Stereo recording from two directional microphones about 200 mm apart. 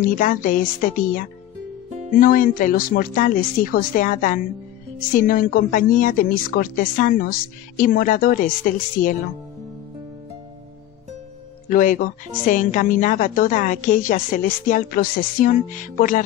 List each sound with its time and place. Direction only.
0.2 s a woman's voice: 40° left (ahead or behind)
11.7 s speech: 40° left (ahead or behind)